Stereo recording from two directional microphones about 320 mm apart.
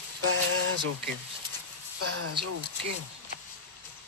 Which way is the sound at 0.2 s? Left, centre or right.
Right.